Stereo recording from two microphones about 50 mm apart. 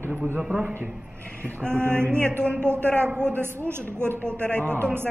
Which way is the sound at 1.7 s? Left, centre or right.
Right.